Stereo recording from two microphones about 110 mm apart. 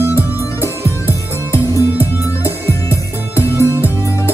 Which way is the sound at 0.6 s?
25° left (ahead or behind).